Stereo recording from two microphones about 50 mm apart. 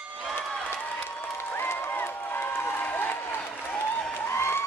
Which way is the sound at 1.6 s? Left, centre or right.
Left.